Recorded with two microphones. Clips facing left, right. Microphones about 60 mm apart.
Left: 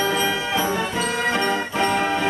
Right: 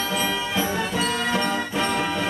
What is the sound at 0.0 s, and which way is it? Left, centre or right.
Music, left.